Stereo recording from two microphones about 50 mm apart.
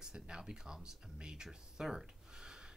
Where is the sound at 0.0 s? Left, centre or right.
Centre.